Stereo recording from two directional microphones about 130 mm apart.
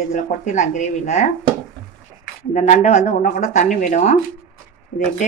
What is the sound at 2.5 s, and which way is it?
Speech, 60° left (ahead or behind).